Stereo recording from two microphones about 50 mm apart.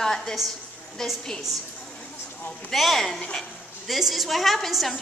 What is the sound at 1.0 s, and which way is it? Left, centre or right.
Speech, centre.